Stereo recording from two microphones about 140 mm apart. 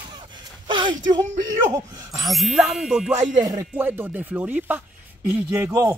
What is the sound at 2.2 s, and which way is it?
Speech, centre (ahead or behind).